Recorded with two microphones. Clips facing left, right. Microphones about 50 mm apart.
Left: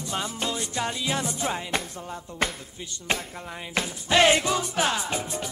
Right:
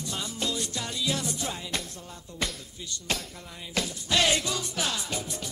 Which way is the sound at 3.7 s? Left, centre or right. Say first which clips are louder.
Left 5 dB; left.